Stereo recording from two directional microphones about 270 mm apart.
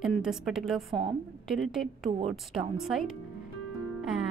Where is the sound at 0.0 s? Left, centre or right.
Centre.